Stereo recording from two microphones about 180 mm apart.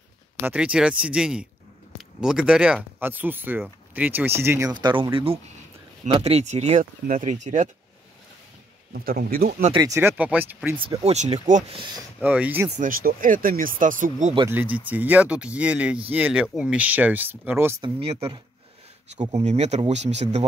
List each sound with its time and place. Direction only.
0.4 s speech: 5° right (ahead or behind); by 7.7 s 45° right (ahead or behind)
8.9 s speech: 55° right (ahead or behind)
9.5 s speech: 40° right (ahead or behind)
9.8 s speech: 15° right (ahead or behind)
11.1 s speech: 35° right (ahead or behind)
12.2 s speech: 10° right (ahead or behind)
12.7 s speech: 50° right (ahead or behind)
14.5 s speech: 10° right (ahead or behind)
17.8 s speech: 30° right (ahead or behind)
19.3 s speech: 35° right (ahead or behind)